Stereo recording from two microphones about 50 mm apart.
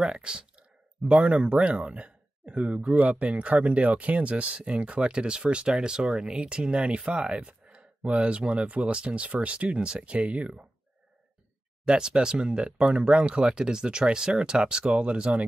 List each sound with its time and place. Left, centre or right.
0.0 s a sound: centre
1.5 s speech: right
11.8 s speech: centre